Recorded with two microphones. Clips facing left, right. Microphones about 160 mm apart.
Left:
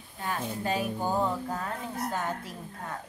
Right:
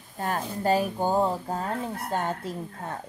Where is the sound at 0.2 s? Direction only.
40° right (ahead or behind).